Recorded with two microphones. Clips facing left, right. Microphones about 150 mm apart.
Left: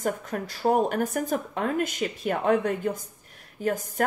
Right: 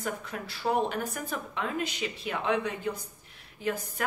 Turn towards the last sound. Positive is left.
turn(degrees=45)  # may be behind; listen again after turning